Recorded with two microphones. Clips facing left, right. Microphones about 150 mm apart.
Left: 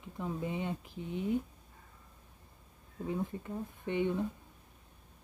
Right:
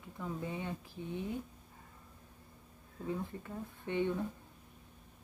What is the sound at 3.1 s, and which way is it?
Speech, 15° left (ahead or behind).